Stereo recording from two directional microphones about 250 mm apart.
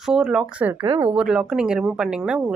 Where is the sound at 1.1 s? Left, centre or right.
Centre.